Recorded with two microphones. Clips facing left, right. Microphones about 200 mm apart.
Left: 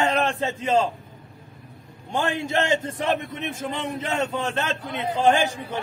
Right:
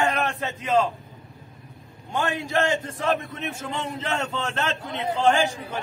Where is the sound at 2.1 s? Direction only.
25° left (ahead or behind).